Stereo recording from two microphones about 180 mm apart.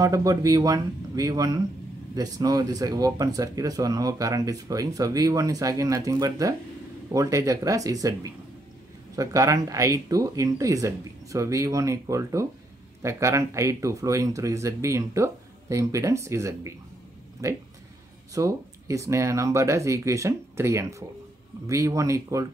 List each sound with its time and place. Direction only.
0.0 s speech: 20° right (ahead or behind)